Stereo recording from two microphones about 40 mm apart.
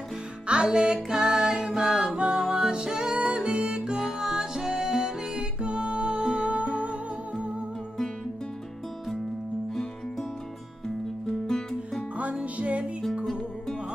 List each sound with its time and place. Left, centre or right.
0.5 s music: right
1.0 s music: centre
1.7 s music: centre
2.1 s music: right
4.2 s music: centre; by 7.5 s right
11.4 s music: centre
12.5 s music: right
13.1 s music: centre